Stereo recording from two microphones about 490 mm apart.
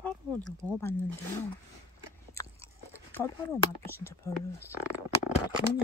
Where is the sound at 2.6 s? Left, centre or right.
Centre.